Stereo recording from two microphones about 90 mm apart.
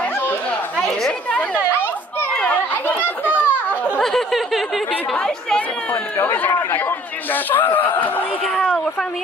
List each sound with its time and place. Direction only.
0.7 s speech: 10° left (ahead or behind)
2.3 s chatter: 15° left (ahead or behind)
4.0 s speech: 5° left (ahead or behind)
6.1 s speech: 20° left (ahead or behind)
7.5 s speech: 20° left (ahead or behind)
8.5 s speech: 10° left (ahead or behind)